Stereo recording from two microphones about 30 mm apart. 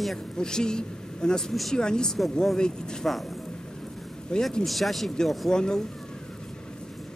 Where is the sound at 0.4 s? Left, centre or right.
Left.